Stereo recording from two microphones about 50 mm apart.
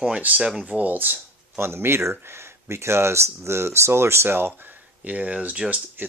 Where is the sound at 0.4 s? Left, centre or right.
Centre.